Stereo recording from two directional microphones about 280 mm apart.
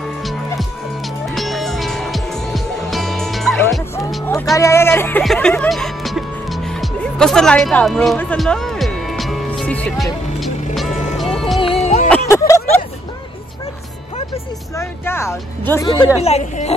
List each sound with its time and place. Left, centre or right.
1.3 s music: centre
11.6 s music: left
12.1 s a sound: centre
14.8 s speech: centre
16.2 s a woman's voice: left